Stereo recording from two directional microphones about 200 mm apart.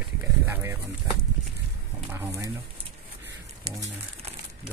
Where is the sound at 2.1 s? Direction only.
10° right (ahead or behind).